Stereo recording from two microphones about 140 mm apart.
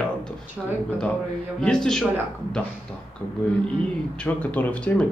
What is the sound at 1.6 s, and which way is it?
Speech, 5° left (ahead or behind).